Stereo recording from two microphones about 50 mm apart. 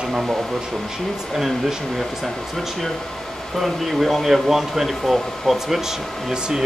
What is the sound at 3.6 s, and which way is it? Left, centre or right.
Speech, centre.